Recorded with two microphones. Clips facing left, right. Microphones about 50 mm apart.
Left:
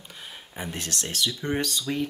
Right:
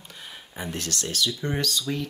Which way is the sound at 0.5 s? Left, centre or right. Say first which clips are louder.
Right 1 dB; centre.